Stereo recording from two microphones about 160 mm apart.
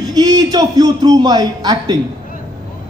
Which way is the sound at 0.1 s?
25° right (ahead or behind).